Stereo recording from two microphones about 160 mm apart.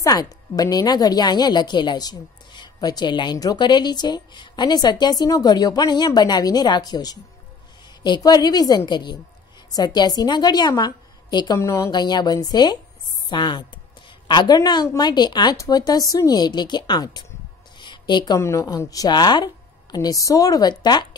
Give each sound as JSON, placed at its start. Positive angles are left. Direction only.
{"t": 0.0, "sound": "a woman's voice", "side_deg": 25}